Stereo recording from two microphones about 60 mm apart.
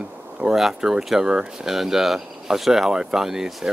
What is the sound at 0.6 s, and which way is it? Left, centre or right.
Speech, centre.